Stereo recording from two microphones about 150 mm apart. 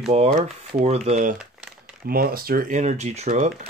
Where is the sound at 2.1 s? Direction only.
80° right; by 3.5 s 50° right (ahead or behind).